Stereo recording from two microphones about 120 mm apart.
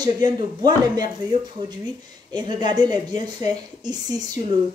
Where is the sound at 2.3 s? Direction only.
40° right (ahead or behind).